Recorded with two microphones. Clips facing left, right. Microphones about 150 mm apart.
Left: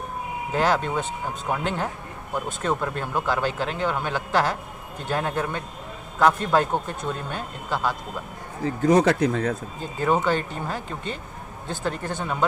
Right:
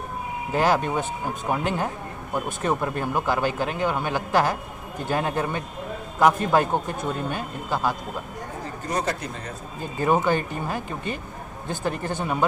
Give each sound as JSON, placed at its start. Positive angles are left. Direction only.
{"t": 0.5, "sound": "speech", "side_deg": -15}
{"t": 8.6, "sound": "speech", "side_deg": 80}
{"t": 9.9, "sound": "speech", "side_deg": -15}